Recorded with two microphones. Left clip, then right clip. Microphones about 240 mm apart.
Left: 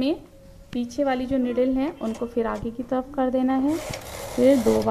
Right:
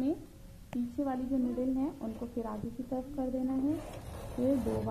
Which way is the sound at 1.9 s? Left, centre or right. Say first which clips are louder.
Left 13 dB; left.